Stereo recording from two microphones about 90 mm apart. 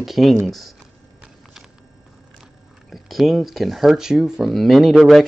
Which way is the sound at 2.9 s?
Centre (ahead or behind).